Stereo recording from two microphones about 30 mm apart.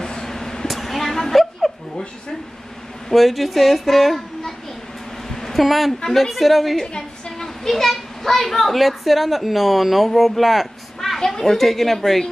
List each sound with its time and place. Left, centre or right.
0.0 s vehicle: centre
0.7 s vehicle: centre
1.6 s a sound: centre
3.1 s speech: centre
5.3 s a sound: centre
5.6 s a woman's voice: centre
6.9 s a sound: left
8.2 s a woman's voice: centre
11.1 s a woman's voice: centre